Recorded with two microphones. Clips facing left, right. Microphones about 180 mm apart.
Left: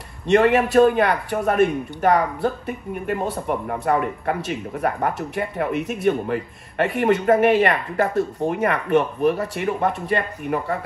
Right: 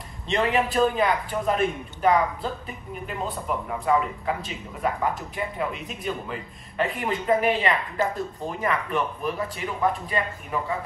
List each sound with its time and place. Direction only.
0.3 s a man's voice: 60° left (ahead or behind)